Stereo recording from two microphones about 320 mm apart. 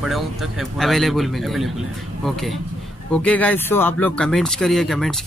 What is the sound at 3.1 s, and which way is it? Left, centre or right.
Speech, centre.